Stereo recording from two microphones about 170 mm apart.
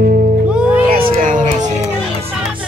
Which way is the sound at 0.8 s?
60° right (ahead or behind).